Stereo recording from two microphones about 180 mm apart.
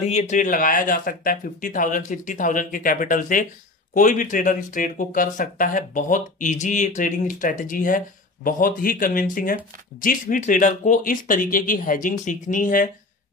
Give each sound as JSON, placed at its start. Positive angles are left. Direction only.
{"t": 0.0, "sound": "speech", "side_deg": 40}